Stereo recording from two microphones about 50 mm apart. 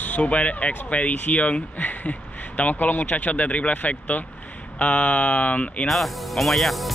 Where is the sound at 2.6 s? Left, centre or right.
Left.